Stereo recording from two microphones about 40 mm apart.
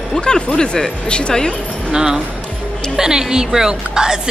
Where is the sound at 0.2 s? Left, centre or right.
Left.